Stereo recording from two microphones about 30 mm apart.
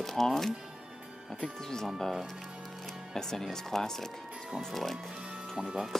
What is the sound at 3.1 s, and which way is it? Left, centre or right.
Speech, centre.